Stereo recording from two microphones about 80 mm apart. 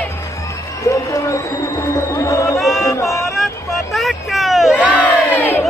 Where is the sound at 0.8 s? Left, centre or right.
Left.